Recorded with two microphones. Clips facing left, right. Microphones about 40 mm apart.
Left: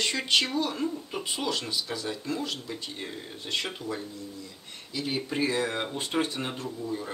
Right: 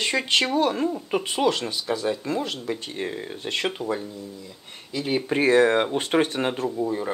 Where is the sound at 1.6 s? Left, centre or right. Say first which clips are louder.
Right 6 dB; right.